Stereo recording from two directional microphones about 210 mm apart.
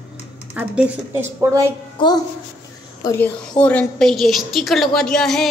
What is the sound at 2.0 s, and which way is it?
Speech, 20° left (ahead or behind).